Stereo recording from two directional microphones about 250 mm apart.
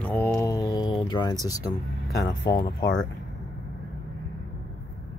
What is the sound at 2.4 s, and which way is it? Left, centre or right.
Speech, left.